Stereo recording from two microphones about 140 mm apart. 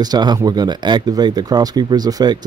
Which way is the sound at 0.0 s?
30° right (ahead or behind).